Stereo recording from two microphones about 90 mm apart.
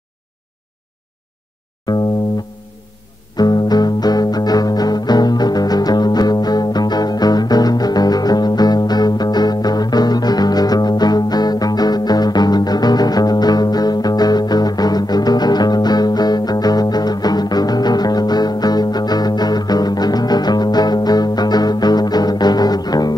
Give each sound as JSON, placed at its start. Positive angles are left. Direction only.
{"t": 3.3, "sound": "music", "side_deg": 50}